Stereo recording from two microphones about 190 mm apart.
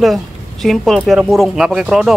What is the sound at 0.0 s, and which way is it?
Speech, centre (ahead or behind).